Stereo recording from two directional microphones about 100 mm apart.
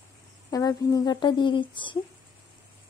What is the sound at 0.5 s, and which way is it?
A woman's voice, 40° left (ahead or behind).